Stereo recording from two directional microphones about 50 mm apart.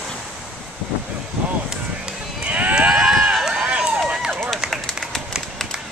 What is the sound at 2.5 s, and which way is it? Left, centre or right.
Clip-clop, right.